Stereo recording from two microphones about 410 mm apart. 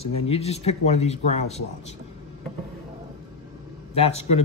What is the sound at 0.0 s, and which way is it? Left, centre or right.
Speech, centre.